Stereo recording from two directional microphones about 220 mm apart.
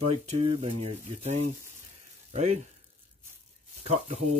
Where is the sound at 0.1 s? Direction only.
30° right (ahead or behind).